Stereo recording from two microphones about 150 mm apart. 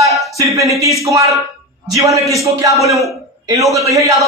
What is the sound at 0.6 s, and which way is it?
A man's voice, 20° right (ahead or behind).